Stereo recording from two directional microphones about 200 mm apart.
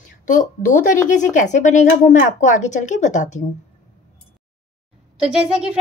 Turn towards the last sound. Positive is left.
turn(degrees=-5)  # may be behind; listen again after turning